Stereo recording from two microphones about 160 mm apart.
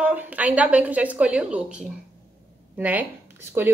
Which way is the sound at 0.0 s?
10° right (ahead or behind).